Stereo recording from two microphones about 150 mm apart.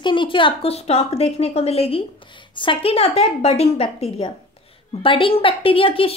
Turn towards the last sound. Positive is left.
turn(degrees=40)  # may be behind; listen again after turning